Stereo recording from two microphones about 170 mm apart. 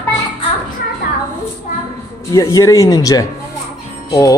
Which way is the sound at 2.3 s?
20° left (ahead or behind).